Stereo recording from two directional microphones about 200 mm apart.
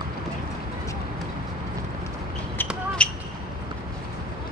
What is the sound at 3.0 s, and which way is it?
Basketball bounce, 5° left (ahead or behind).